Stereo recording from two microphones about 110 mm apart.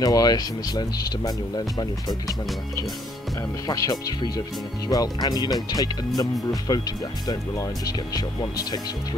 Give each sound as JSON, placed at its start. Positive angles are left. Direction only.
{"t": 0.0, "sound": "speech", "side_deg": 35}
{"t": 3.6, "sound": "speech", "side_deg": 35}